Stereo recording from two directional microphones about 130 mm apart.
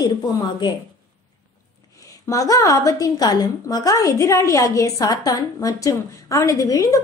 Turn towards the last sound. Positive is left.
turn(degrees=25)  # may be behind; listen again after turning